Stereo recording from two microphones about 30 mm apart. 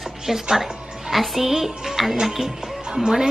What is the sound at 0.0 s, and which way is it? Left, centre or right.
Music, centre.